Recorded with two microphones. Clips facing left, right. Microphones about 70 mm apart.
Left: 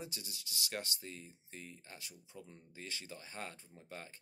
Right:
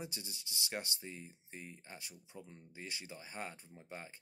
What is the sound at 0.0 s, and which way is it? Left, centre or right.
Speech, right.